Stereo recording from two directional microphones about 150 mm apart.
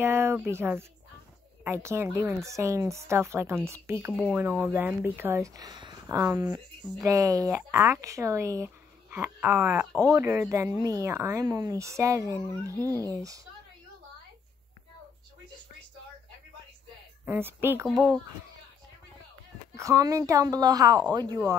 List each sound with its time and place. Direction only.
0.0 s speech: 15° right (ahead or behind)
12.7 s speech: 15° left (ahead or behind)
13.0 s speech: 25° right (ahead or behind)
17.2 s speech: 15° right (ahead or behind)
17.8 s speech: 5° left (ahead or behind)
19.7 s speech: 20° right (ahead or behind)